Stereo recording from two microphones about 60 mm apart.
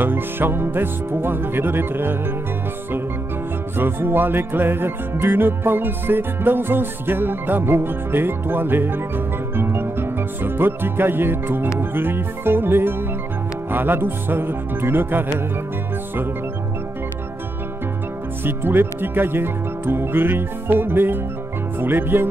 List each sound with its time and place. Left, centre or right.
0.0 s music: right
3.7 s music: right
18.4 s music: right